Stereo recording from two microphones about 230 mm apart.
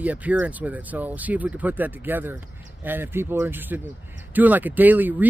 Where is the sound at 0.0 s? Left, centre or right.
Centre.